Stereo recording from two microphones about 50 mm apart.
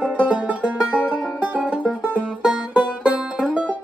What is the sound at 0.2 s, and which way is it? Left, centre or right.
Music, right.